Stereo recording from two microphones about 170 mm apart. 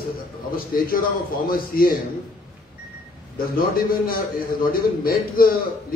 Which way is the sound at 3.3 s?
60° left (ahead or behind).